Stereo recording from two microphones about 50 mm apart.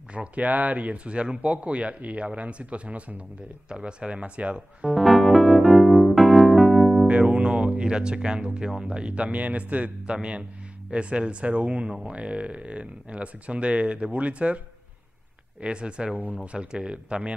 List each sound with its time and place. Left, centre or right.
0.1 s speech: right
4.9 s music: centre
7.1 s speech: right
15.6 s speech: right